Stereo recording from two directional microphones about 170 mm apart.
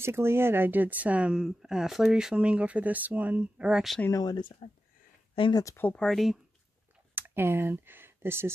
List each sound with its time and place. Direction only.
0.0 s speech: 15° right (ahead or behind)
4.0 s speech: 20° left (ahead or behind)
5.6 s speech: 15° left (ahead or behind)
7.2 s speech: 10° right (ahead or behind)